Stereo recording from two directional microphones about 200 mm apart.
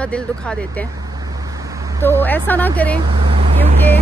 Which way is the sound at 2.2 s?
10° left (ahead or behind).